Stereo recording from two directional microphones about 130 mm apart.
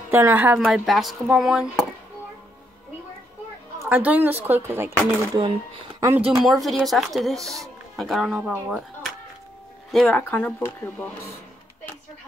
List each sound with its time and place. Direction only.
0.1 s a woman's voice: 15° right (ahead or behind)
0.7 s speech: centre (ahead or behind)
3.8 s a woman's voice: 15° right (ahead or behind)
5.9 s speech: 20° right (ahead or behind)
6.2 s speech: 5° right (ahead or behind); by 11.1 s 10° left (ahead or behind)